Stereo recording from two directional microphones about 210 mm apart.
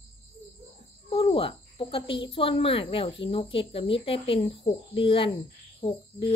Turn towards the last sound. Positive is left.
turn(degrees=20)  # may be behind; listen again after turning